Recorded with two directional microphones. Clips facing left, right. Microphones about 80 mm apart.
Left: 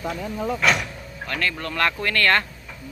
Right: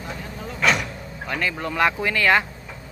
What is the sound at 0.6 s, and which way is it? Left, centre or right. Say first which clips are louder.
Speech: right 3 dB; centre.